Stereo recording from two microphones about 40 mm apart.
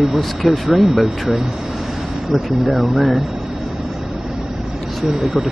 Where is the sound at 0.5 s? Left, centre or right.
Centre.